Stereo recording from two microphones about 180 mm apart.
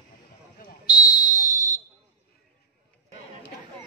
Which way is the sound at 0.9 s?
20° left (ahead or behind).